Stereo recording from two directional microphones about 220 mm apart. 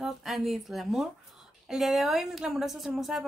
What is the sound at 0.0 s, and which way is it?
A woman's voice, centre (ahead or behind).